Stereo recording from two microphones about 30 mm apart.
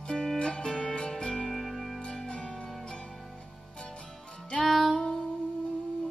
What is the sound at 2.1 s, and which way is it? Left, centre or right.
Music, left.